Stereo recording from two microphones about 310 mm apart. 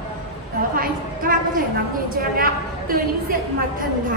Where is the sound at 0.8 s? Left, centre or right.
Right.